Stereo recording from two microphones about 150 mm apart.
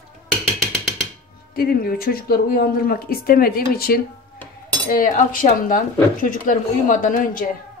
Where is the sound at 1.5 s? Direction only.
80° left.